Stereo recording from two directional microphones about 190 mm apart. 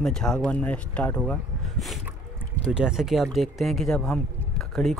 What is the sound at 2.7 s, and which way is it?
Speech, 5° right (ahead or behind).